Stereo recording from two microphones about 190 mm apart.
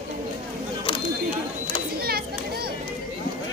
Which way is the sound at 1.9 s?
55° right (ahead or behind).